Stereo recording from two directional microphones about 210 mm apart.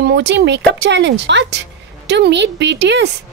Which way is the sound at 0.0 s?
55° right (ahead or behind).